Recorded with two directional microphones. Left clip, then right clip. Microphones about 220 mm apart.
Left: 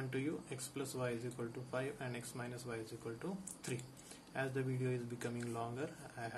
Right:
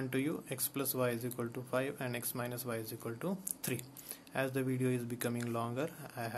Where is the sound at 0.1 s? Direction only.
50° right (ahead or behind).